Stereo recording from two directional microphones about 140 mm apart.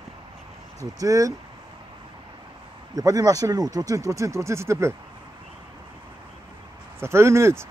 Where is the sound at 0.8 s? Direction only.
25° right (ahead or behind).